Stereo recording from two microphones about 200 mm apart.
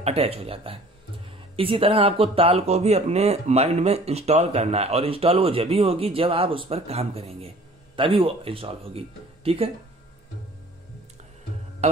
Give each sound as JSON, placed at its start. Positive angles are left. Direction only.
{"t": 0.0, "sound": "speech", "side_deg": -30}
{"t": 11.8, "sound": "music", "side_deg": -35}